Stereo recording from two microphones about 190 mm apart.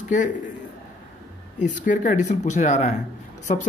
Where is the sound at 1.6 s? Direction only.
40° left (ahead or behind).